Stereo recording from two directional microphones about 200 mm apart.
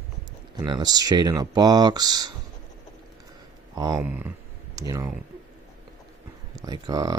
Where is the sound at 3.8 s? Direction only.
15° right (ahead or behind).